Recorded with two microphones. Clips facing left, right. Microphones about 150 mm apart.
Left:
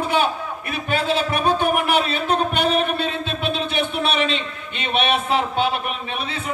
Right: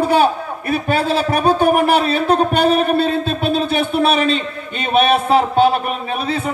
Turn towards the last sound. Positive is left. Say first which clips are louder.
# right 7 dB
turn(degrees=-45)  # may be behind; listen again after turning